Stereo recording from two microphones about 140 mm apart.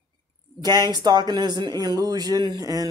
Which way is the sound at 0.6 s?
30° right (ahead or behind).